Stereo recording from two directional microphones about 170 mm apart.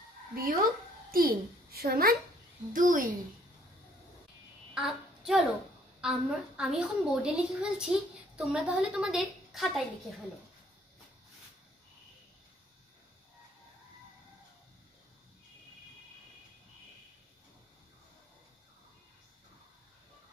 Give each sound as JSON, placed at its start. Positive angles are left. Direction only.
{"t": 0.3, "sound": "a child's voice", "side_deg": -60}
{"t": 4.7, "sound": "a woman's voice", "side_deg": -5}